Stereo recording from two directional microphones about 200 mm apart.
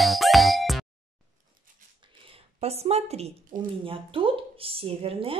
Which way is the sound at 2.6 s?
30° right (ahead or behind).